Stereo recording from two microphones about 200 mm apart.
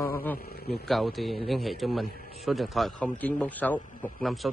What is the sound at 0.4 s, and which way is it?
Speech, 50° left (ahead or behind).